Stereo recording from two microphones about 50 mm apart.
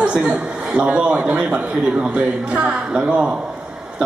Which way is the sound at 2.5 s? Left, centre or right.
Right.